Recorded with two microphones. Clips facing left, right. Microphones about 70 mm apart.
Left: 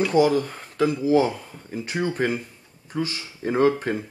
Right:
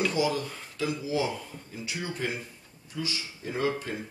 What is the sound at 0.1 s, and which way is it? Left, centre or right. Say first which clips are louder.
Speech: left 9 dB; left.